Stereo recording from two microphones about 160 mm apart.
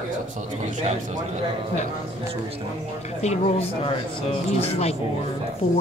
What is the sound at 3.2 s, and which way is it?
Speech, 40° left (ahead or behind).